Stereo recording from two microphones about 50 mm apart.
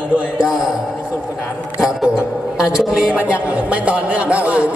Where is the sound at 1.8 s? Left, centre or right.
Centre.